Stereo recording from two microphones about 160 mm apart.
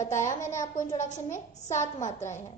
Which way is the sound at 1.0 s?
50° left (ahead or behind).